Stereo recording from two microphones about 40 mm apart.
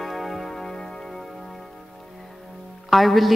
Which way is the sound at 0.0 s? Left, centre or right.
Centre.